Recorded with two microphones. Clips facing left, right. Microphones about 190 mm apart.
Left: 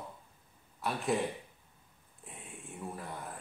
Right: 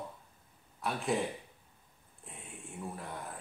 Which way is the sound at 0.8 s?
Centre (ahead or behind).